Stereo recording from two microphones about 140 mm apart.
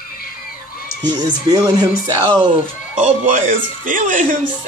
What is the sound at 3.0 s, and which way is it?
Speech, 60° right (ahead or behind).